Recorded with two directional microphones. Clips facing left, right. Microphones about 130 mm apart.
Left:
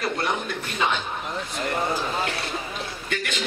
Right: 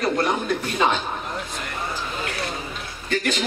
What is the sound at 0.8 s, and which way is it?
Speech, 35° right (ahead or behind).